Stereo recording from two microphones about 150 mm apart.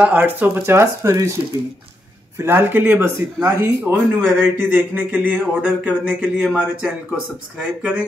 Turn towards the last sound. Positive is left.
turn(degrees=-5)  # may be behind; listen again after turning